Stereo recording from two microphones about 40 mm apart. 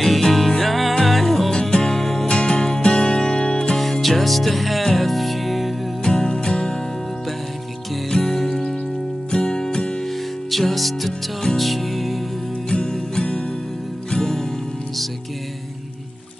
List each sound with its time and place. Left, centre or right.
0.0 s music: centre
1.5 s music: centre
2.2 s music: left
3.7 s music: centre
6.0 s music: centre
8.1 s music: centre
10.5 s music: centre
12.6 s music: centre